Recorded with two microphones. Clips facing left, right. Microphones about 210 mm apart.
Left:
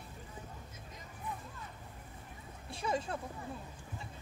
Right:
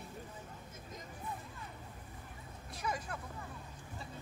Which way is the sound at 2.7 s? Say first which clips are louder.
Left 5 dB; 25° left (ahead or behind).